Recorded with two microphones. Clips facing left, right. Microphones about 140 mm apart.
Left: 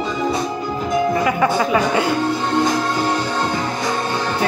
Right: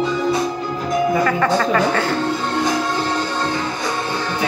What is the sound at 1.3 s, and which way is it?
Speech, 10° left (ahead or behind).